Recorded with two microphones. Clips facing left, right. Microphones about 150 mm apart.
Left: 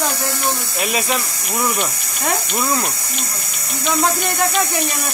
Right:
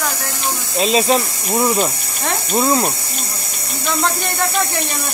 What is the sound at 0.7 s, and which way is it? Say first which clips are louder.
Speech: right 10 dB; 25° right (ahead or behind).